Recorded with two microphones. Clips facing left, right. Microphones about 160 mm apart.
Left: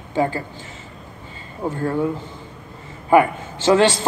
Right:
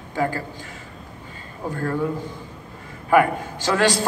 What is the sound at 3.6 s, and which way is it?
Speech, 20° left (ahead or behind).